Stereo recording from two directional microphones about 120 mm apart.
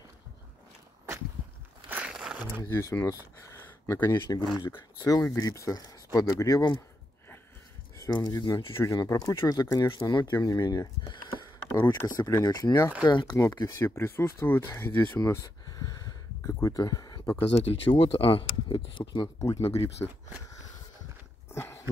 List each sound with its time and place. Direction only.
1.9 s a sound: 10° right (ahead or behind)
2.7 s speech: 20° left (ahead or behind)
4.1 s speech: 35° left (ahead or behind)
8.0 s speech: 35° left (ahead or behind)
8.7 s speech: 25° left (ahead or behind)
13.0 s speech: 40° left (ahead or behind)
13.4 s speech: 30° left (ahead or behind)
15.2 s a sound: 30° left (ahead or behind)
16.5 s speech: 25° left (ahead or behind)
17.6 s speech: 55° left (ahead or behind)
19.4 s speech: 25° left (ahead or behind)
19.7 s speech: 55° left (ahead or behind)
21.5 s a sound: 20° left (ahead or behind)